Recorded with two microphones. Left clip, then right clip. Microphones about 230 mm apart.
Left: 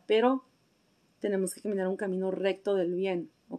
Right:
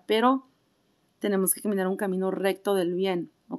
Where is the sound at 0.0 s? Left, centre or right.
Right.